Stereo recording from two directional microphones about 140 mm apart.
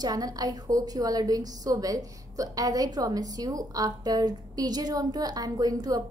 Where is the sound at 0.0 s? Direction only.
25° right (ahead or behind).